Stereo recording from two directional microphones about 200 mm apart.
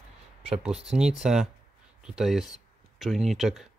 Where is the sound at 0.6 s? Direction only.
5° right (ahead or behind).